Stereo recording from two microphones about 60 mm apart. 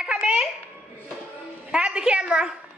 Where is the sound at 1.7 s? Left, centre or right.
Centre.